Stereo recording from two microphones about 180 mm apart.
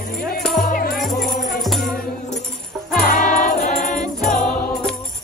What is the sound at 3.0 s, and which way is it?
Jingle bell, 50° left (ahead or behind).